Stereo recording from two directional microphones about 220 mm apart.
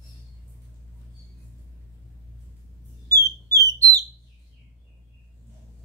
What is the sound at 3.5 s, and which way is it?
Whistle, 15° right (ahead or behind).